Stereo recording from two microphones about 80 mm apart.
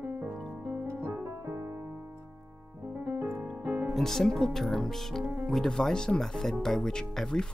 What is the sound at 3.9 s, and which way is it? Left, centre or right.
Speech, centre.